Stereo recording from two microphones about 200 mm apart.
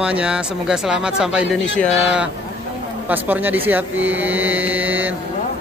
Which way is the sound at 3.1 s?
10° right (ahead or behind).